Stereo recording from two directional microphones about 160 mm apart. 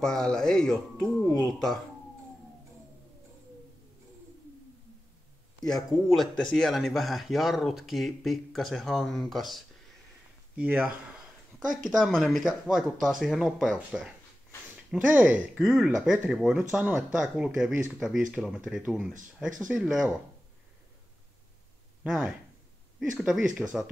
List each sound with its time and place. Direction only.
0.0 s speech: 5° left (ahead or behind)
1.0 s a sound: centre (ahead or behind)
5.6 s speech: centre (ahead or behind)
11.6 s speech: 55° right (ahead or behind)
11.9 s speech: centre (ahead or behind)
22.0 s speech: 5° right (ahead or behind)